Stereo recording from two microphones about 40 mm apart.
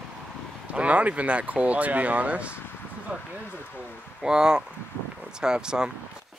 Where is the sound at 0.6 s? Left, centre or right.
Right.